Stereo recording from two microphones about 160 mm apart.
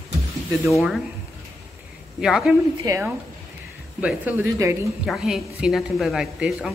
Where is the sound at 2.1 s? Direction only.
5° right (ahead or behind).